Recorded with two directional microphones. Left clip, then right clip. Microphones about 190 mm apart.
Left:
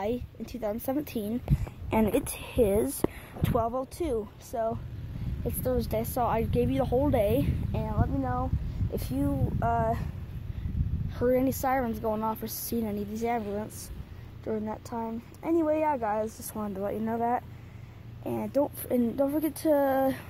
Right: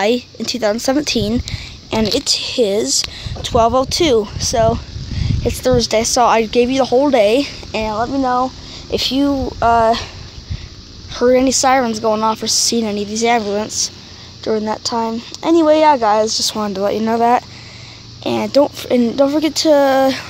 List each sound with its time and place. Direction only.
0.0 s a woman's voice: 30° right (ahead or behind)
1.9 s a woman's voice: 5° right (ahead or behind)
3.9 s a woman's voice: 35° right (ahead or behind); by 7.5 s 20° right (ahead or behind)
7.7 s speech: 35° right (ahead or behind)
11.1 s a woman's voice: 25° right (ahead or behind)
18.5 s a woman's voice: 25° right (ahead or behind)